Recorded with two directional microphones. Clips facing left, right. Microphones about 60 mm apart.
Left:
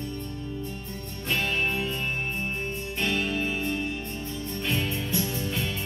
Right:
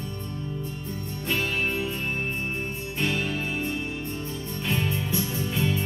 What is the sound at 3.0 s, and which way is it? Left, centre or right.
Music, centre.